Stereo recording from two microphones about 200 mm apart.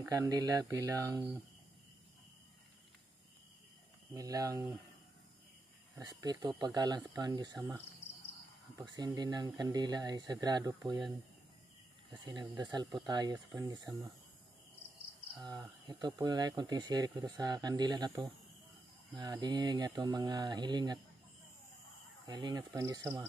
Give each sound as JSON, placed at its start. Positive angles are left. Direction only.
{"t": 0.1, "sound": "speech", "side_deg": -20}
{"t": 4.1, "sound": "speech", "side_deg": -20}
{"t": 5.9, "sound": "speech", "side_deg": -20}
{"t": 8.8, "sound": "speech", "side_deg": -20}
{"t": 15.3, "sound": "speech", "side_deg": -20}
{"t": 22.2, "sound": "speech", "side_deg": -20}